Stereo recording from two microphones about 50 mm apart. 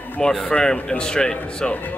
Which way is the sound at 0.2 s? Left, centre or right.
Centre.